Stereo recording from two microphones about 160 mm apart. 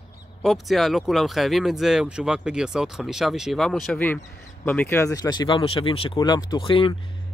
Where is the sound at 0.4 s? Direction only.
Centre (ahead or behind).